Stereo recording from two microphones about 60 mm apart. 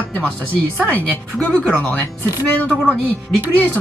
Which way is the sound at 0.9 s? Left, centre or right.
Centre.